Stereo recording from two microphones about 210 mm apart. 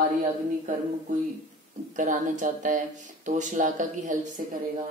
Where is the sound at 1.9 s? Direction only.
35° right (ahead or behind).